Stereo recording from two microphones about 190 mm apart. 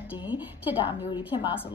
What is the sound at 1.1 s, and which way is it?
Speech, 25° left (ahead or behind).